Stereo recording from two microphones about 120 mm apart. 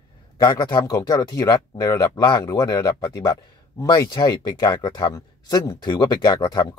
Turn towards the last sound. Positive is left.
turn(degrees=35)  # may be behind; listen again after turning